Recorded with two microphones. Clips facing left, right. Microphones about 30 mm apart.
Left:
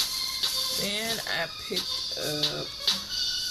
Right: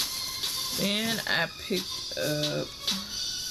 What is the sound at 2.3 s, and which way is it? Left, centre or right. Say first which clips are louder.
Music: even; left.